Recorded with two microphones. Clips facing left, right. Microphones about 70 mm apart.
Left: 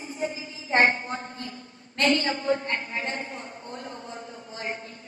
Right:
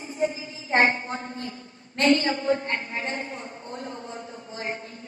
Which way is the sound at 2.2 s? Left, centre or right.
Right.